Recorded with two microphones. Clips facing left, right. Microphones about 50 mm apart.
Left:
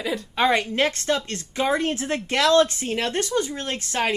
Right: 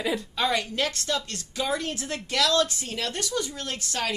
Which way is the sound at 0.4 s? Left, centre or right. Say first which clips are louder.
Left 7 dB; left.